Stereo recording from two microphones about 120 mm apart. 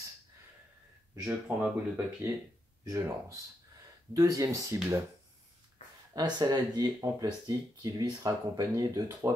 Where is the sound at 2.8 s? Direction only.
25° right (ahead or behind).